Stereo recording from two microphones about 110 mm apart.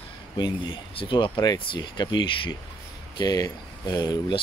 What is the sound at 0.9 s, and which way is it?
Speech, 50° left (ahead or behind).